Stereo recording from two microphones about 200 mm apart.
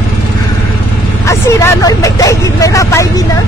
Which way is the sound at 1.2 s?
15° left (ahead or behind).